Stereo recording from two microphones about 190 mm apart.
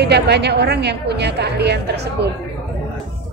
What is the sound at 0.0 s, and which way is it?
A woman's voice, 60° right (ahead or behind).